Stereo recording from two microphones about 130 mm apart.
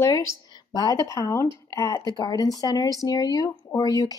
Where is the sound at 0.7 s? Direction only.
25° left (ahead or behind).